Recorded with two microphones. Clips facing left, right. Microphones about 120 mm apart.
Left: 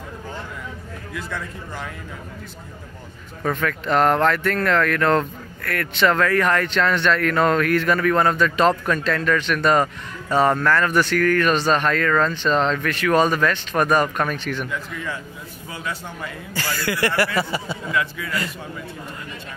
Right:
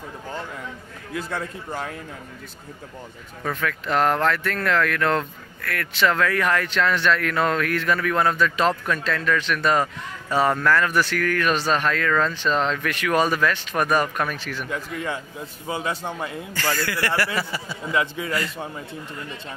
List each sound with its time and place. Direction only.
1.1 s a man's voice: 40° right (ahead or behind)
3.4 s speech: centre (ahead or behind)
15.7 s a man's voice: 25° right (ahead or behind)
16.7 s a man's voice: 15° left (ahead or behind)
17.9 s a man's voice: 25° right (ahead or behind)